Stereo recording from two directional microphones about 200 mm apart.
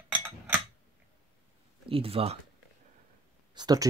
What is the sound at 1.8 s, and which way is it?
Speech, 30° right (ahead or behind).